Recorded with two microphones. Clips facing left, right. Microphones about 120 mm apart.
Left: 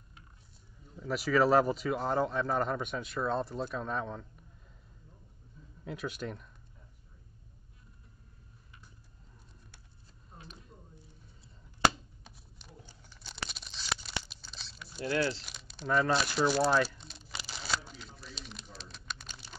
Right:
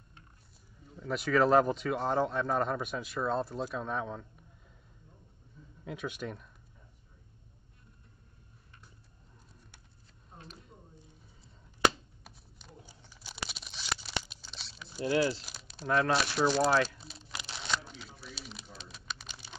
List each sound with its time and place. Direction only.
0.8 s speech: centre (ahead or behind)
5.9 s speech: centre (ahead or behind)
10.3 s a sound: centre (ahead or behind)
12.2 s typewriter: centre (ahead or behind)
13.1 s tearing: 10° right (ahead or behind)
14.3 s a sound: centre (ahead or behind)
15.0 s speech: 15° right (ahead or behind)
15.4 s crumpling: centre (ahead or behind)